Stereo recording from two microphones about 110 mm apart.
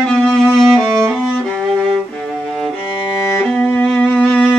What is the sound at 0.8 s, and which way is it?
Music, 5° right (ahead or behind).